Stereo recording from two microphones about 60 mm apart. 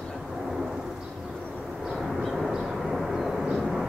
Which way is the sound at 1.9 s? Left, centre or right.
Centre.